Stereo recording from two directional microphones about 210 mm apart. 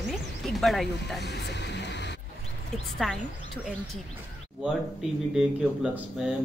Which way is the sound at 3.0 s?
Centre (ahead or behind).